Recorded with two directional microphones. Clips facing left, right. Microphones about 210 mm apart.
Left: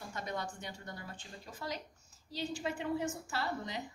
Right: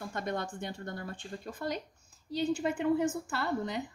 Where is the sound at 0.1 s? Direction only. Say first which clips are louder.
Right 4 dB; 55° right (ahead or behind).